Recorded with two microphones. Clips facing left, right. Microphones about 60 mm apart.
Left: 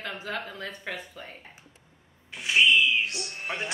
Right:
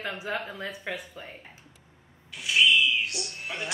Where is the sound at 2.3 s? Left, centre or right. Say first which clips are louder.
Left 2 dB; left.